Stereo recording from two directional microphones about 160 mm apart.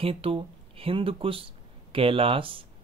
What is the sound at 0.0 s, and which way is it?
Speech, 35° right (ahead or behind).